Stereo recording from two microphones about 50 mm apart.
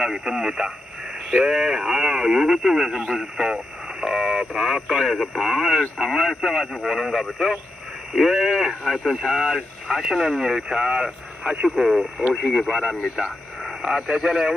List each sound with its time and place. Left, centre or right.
0.2 s a man's voice: centre
4.0 s a sound: centre
4.6 s speech: centre
11.6 s a man's voice: centre